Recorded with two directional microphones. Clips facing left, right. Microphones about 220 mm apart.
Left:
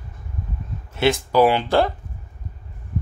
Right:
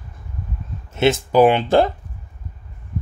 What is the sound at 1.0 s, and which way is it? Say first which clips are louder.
Speech: right 3 dB; 20° right (ahead or behind).